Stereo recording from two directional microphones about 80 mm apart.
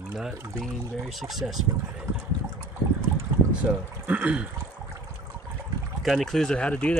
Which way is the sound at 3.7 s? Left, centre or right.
Centre.